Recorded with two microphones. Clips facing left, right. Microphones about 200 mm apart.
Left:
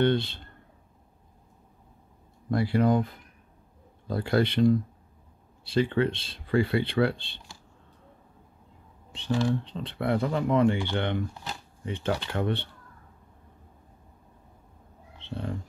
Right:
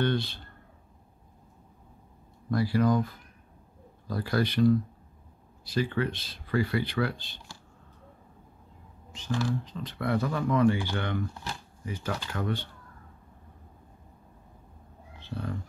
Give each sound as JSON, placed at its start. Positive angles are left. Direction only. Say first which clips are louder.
{"t": 0.0, "sound": "speech", "louder": "left 4 dB", "side_deg": 25}
{"t": 2.5, "sound": "speech", "louder": "left 1 dB", "side_deg": 25}
{"t": 9.1, "sound": "speech", "louder": "left 4 dB", "side_deg": 30}
{"t": 15.1, "sound": "a sound", "louder": "left 1 dB", "side_deg": 25}